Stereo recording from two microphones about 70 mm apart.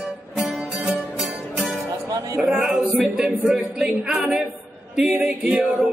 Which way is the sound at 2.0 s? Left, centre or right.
Right.